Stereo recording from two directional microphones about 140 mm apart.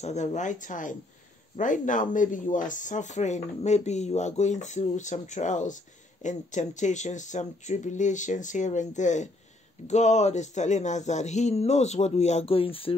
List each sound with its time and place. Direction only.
0.0 s speech: 55° left (ahead or behind)